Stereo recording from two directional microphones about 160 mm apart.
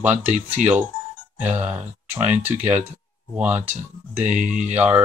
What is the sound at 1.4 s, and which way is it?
Speech, 10° right (ahead or behind).